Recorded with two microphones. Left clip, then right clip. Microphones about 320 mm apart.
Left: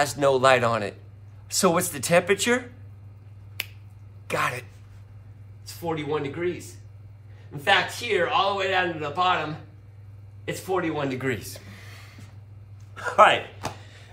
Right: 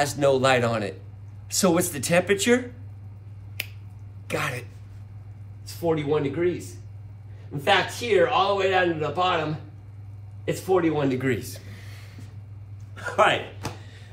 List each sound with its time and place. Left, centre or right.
0.0 s speech: centre
3.6 s finger snapping: centre
4.3 s speech: centre
5.7 s speech: centre
12.9 s a sound: centre